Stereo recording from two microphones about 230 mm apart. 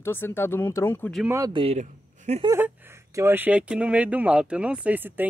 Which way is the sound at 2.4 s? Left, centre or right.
Centre.